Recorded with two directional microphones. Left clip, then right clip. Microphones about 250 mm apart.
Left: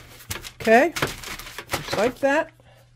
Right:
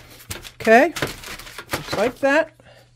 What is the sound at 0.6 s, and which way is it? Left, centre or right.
Speech, centre.